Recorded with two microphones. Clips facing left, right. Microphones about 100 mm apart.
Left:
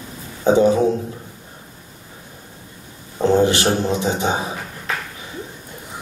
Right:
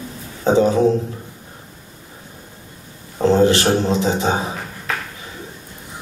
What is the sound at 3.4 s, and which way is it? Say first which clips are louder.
A man's voice: right 2 dB; 20° left (ahead or behind).